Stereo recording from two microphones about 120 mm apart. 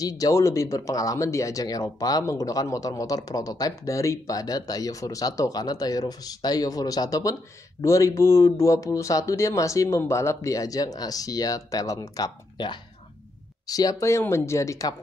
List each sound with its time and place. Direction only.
0.0 s speech: 30° left (ahead or behind)